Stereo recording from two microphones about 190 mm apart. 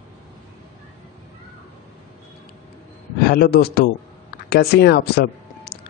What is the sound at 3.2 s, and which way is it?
A man's voice, 55° left (ahead or behind).